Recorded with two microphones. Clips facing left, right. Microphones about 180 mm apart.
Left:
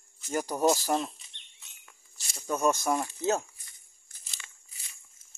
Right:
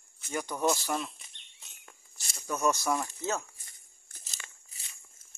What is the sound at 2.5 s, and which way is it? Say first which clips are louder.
Speech: left 2 dB; 30° left (ahead or behind).